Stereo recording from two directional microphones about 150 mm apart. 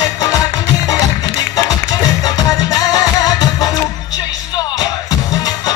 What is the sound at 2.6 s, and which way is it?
Music, 25° left (ahead or behind).